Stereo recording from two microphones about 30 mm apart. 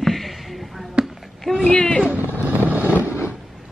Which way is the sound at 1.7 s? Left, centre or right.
Left.